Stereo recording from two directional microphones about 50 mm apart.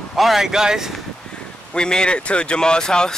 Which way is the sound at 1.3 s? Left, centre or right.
Centre.